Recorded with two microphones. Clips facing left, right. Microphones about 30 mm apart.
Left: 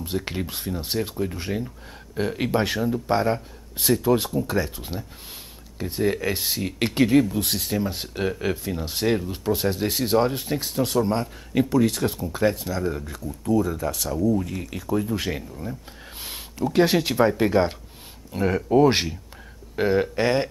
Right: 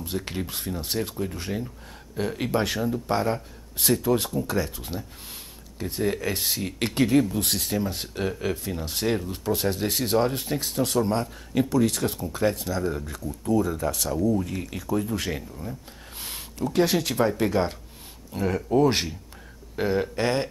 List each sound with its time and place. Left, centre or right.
0.0 s speech: centre